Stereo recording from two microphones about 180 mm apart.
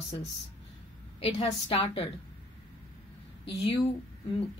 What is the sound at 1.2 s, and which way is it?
Speech, 30° left (ahead or behind).